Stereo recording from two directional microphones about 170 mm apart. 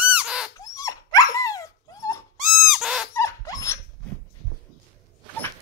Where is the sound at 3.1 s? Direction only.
15° left (ahead or behind).